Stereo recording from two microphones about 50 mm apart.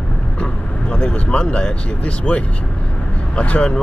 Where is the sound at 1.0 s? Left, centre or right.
Left.